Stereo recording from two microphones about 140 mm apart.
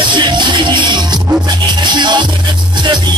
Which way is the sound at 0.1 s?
35° right (ahead or behind).